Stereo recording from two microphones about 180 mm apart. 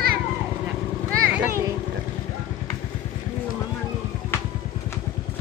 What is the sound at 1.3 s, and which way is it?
Speech, 10° right (ahead or behind).